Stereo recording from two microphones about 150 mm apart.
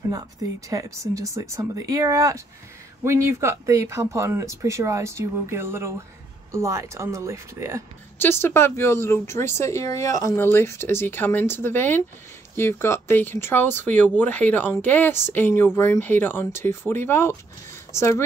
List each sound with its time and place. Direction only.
0.1 s speech: 25° right (ahead or behind)
8.2 s speech: 15° left (ahead or behind)